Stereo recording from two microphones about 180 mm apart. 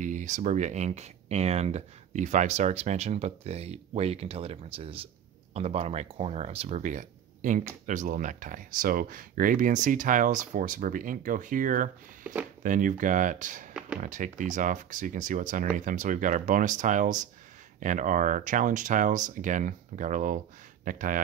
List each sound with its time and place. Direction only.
0.0 s speech: 45° right (ahead or behind)
12.2 s speech: 10° right (ahead or behind)
12.6 s speech: 45° right (ahead or behind)